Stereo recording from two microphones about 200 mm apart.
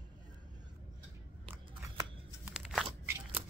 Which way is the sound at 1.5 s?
10° right (ahead or behind).